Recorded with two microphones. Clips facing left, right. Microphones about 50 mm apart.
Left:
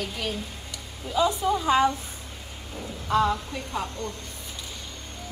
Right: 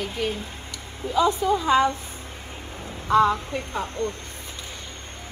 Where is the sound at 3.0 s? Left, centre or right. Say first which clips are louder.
Right 4 dB; right.